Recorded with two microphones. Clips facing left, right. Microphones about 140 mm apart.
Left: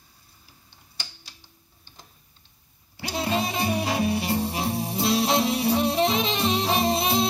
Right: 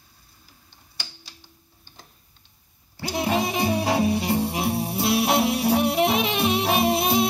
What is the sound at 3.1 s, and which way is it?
Music, 20° right (ahead or behind).